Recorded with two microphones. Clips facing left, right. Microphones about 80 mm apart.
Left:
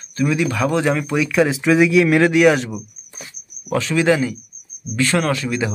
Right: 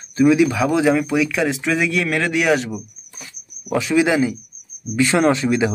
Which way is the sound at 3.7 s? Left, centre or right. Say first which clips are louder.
Even; centre.